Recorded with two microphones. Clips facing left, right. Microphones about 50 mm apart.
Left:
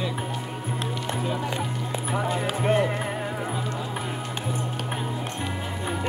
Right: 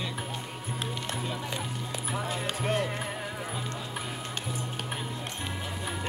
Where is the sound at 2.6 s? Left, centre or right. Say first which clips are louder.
Left 7 dB; centre.